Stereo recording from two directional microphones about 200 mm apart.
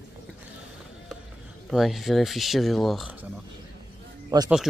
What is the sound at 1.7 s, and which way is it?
Speech, centre (ahead or behind).